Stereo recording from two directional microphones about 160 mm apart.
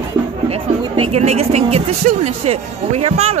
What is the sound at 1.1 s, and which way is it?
Speech, 40° right (ahead or behind).